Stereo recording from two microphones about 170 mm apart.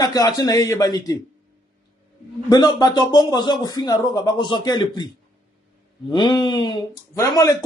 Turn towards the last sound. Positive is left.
turn(degrees=20)  # may be behind; listen again after turning